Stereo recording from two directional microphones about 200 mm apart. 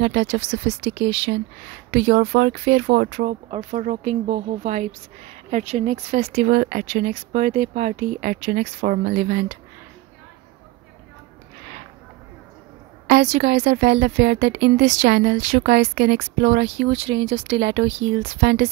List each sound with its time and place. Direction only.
0.0 s a woman's voice: 65° right (ahead or behind)
3.4 s speech: 30° right (ahead or behind)
13.0 s a woman's voice: 55° right (ahead or behind)